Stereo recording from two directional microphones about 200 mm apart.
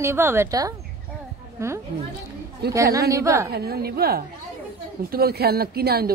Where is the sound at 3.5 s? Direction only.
50° right (ahead or behind).